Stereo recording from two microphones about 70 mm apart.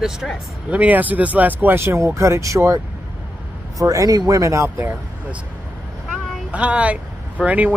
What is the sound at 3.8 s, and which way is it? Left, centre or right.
Speech, right.